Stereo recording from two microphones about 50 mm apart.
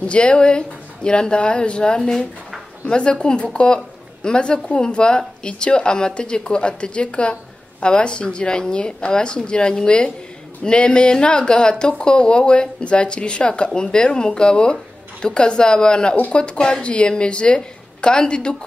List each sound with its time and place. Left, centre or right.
0.0 s a woman's voice: left